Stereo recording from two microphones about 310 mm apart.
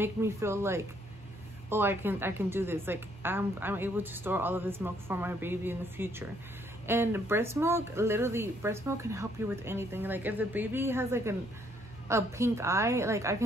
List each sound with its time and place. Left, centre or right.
0.0 s a woman's voice: centre